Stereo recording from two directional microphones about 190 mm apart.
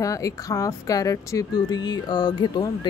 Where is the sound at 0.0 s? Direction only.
15° left (ahead or behind).